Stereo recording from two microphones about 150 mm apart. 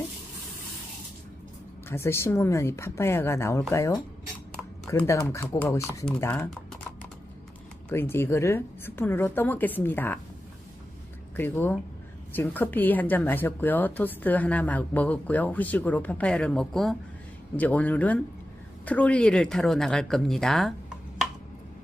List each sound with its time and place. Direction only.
1.9 s a woman's voice: 15° left (ahead or behind)
5.0 s a woman's voice: 20° left (ahead or behind)
7.9 s a woman's voice: 15° left (ahead or behind)
11.3 s a woman's voice: 15° left (ahead or behind); by 21.3 s centre (ahead or behind)